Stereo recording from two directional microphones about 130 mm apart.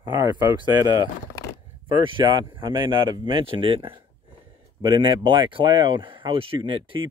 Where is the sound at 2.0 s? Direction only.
40° right (ahead or behind).